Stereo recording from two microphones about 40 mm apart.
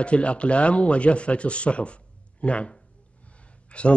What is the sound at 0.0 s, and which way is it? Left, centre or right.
Speech, left.